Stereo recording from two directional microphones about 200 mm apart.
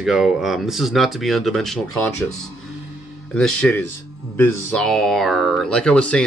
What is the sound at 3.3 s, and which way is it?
Speech, 5° left (ahead or behind).